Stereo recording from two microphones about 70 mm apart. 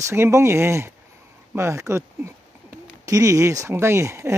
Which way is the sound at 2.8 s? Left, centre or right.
Right.